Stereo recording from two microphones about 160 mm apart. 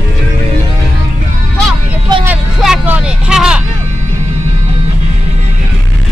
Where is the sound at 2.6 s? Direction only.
5° right (ahead or behind).